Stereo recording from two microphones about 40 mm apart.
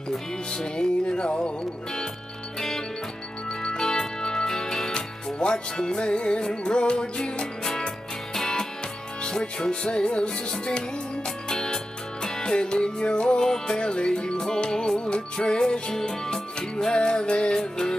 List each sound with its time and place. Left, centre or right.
0.5 s music: centre
3.6 s music: centre
11.4 s music: centre